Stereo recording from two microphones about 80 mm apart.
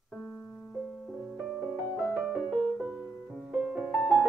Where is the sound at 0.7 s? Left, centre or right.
Centre.